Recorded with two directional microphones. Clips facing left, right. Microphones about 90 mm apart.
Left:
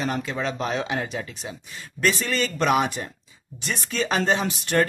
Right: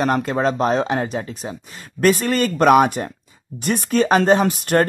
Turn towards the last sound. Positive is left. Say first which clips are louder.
# right 6 dB
turn(degrees=-50)  # may be behind; listen again after turning